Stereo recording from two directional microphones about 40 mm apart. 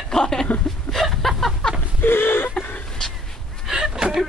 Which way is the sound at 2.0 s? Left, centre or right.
Left.